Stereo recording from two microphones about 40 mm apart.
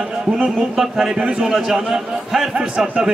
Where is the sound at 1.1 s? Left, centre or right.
Right.